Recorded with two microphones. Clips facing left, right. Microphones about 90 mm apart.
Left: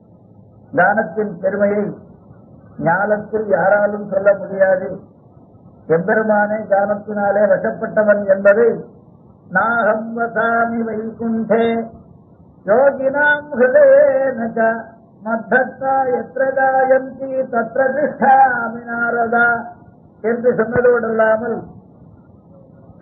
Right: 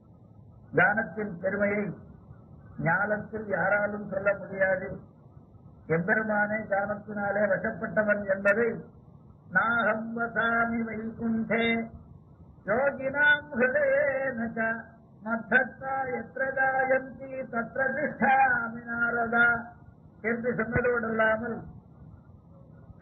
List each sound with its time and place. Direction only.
0.7 s a man's voice: 45° left (ahead or behind)
2.8 s male singing: 45° left (ahead or behind)